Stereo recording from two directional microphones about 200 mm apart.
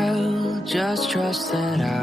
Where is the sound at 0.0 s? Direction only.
Centre (ahead or behind).